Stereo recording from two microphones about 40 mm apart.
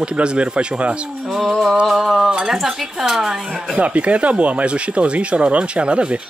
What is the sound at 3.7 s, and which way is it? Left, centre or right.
Speech, right.